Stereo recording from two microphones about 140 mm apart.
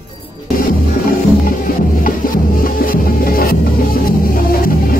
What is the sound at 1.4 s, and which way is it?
Music, 90° left.